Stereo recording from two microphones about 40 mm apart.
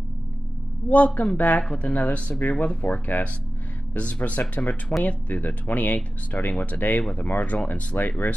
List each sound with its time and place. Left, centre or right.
0.8 s speech: left
1.6 s speech: left
3.9 s speech: left